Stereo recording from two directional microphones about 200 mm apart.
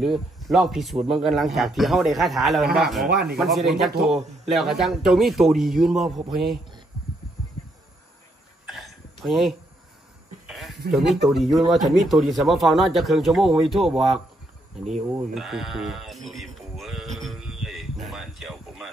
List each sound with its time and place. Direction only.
0.0 s a man's voice: centre (ahead or behind)
3.1 s speech: 55° right (ahead or behind)
3.3 s a man's voice: centre (ahead or behind)
8.6 s a sound: centre (ahead or behind)
10.9 s a man's voice: centre (ahead or behind)
17.2 s a sound: centre (ahead or behind)